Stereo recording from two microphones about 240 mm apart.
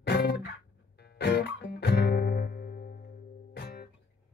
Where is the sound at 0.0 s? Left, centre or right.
Left.